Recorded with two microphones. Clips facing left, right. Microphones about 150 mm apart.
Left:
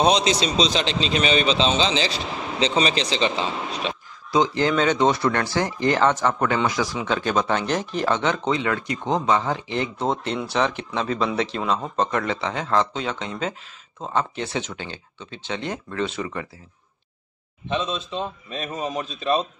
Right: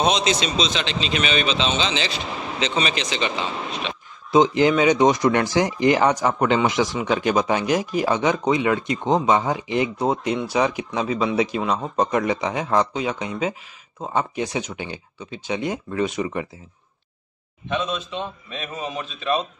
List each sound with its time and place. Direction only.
0.0 s speech: 35° left (ahead or behind)
4.3 s speech: 20° right (ahead or behind)
17.6 s speech: 30° left (ahead or behind)